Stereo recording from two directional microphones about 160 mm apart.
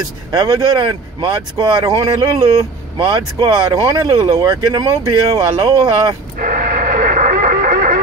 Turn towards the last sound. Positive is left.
turn(degrees=-60)  # may be behind; listen again after turning